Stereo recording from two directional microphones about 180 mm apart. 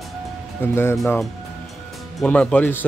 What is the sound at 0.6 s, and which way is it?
Speech, 10° left (ahead or behind).